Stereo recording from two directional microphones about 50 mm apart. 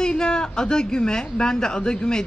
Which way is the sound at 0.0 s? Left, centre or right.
Centre.